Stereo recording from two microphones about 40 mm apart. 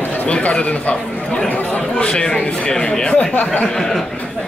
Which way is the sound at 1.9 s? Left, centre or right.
Left.